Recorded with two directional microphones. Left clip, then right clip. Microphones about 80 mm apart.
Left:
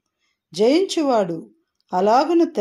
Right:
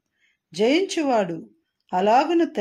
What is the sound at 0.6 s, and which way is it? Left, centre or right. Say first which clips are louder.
Speech: left 3 dB; left.